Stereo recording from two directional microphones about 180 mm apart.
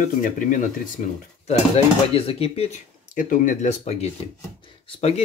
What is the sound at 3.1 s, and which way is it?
Speech, 50° left (ahead or behind).